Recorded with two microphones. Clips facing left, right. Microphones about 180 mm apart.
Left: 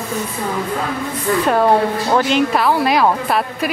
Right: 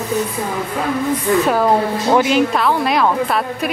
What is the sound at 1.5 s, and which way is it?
A woman's voice, centre (ahead or behind).